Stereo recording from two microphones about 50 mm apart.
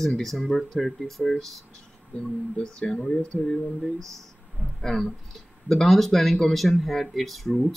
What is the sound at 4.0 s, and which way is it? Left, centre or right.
Speech, right.